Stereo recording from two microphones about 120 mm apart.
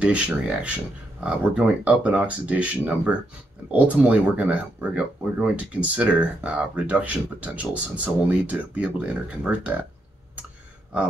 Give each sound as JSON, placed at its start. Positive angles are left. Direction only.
{"t": 0.0, "sound": "speech", "side_deg": -10}